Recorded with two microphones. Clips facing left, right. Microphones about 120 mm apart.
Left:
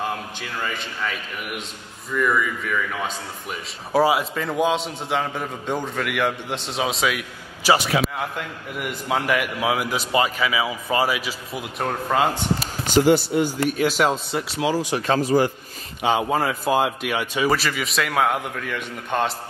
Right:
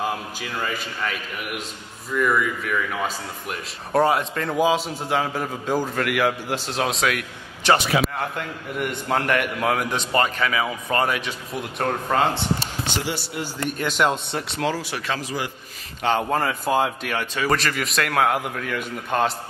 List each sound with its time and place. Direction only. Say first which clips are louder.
0.0 s a man's voice: right 1 dB; 5° right (ahead or behind)
12.8 s speech: left 15 dB; 45° left (ahead or behind)
13.7 s speech: left 2 dB; 5° left (ahead or behind)
14.7 s speech: left 4 dB; 15° left (ahead or behind)
15.0 s speech: left 9 dB; 40° left (ahead or behind)
16.0 s speech: left 1 dB; 5° left (ahead or behind)